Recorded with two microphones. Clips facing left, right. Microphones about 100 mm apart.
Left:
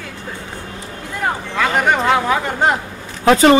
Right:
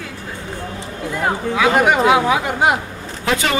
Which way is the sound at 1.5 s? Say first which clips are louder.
Right 2 dB; 10° right (ahead or behind).